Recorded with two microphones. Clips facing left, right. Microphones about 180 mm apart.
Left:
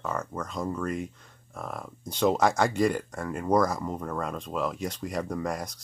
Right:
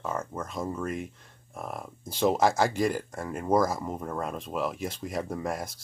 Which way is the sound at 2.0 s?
5° right (ahead or behind).